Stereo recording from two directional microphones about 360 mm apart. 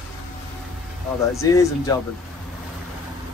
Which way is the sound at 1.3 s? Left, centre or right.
Centre.